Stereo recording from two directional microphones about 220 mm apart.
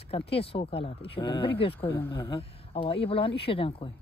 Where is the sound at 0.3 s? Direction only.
25° left (ahead or behind).